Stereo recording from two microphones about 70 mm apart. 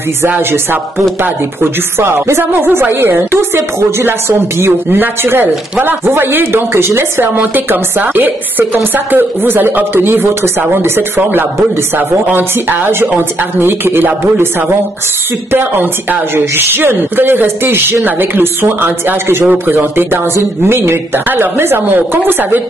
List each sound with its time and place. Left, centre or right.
0.4 s a woman's voice: right